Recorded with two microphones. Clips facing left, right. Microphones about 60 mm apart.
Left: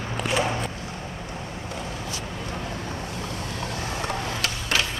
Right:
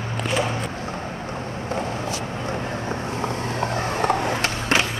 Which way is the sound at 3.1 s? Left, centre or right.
Right.